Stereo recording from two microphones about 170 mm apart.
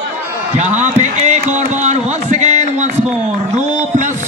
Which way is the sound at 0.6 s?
40° right (ahead or behind).